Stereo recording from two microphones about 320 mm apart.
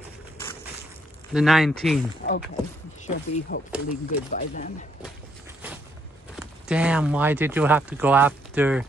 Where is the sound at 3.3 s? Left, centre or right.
Left.